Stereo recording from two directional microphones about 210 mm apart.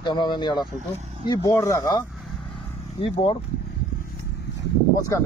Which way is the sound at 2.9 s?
25° left (ahead or behind).